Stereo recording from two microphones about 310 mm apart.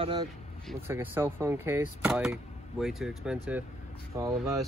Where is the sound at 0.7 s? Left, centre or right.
Centre.